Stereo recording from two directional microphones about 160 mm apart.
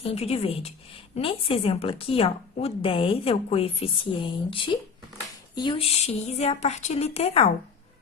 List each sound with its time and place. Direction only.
0.0 s a woman's voice: 40° left (ahead or behind)